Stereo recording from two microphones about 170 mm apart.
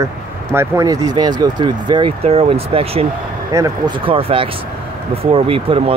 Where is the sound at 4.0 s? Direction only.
30° right (ahead or behind).